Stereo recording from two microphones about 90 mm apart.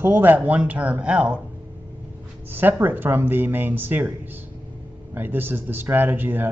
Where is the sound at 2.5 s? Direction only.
20° right (ahead or behind).